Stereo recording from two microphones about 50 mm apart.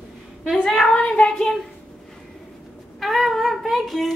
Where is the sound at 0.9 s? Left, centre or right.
Centre.